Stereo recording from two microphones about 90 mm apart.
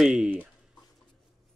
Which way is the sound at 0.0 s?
5° right (ahead or behind).